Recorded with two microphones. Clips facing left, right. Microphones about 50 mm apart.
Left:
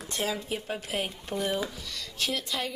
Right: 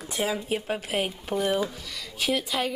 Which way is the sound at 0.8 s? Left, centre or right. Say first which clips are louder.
Right 4 dB; centre.